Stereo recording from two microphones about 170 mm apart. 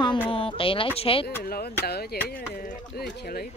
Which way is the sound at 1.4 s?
65° left (ahead or behind).